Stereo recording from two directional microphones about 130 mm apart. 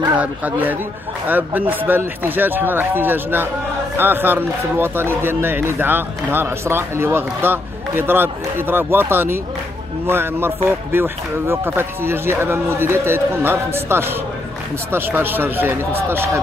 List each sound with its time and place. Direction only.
0.2 s speech: 15° right (ahead or behind)